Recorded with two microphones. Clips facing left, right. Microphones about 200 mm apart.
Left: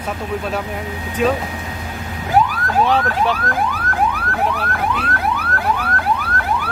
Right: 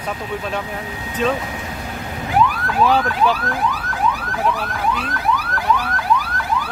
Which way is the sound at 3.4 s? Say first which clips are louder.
Left 1 dB; 55° left (ahead or behind).